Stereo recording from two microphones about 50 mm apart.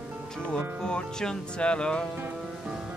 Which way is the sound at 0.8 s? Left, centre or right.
Centre.